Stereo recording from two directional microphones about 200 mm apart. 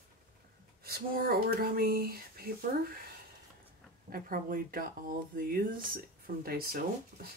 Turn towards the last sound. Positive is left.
turn(degrees=-50)  # may be behind; listen again after turning